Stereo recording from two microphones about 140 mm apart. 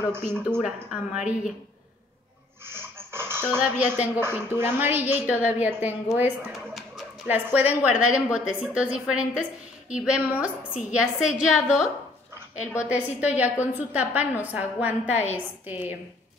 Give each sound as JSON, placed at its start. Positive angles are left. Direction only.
{"t": 0.1, "sound": "a woman's voice", "side_deg": -15}
{"t": 2.6, "sound": "a woman's voice", "side_deg": -15}